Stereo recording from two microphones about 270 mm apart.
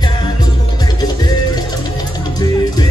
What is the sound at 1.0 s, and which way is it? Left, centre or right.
Music, centre.